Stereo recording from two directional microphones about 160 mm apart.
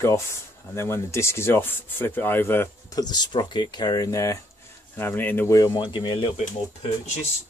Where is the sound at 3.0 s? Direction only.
25° left (ahead or behind).